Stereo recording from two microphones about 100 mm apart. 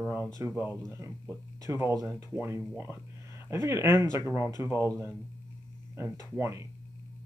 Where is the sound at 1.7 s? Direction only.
30° right (ahead or behind).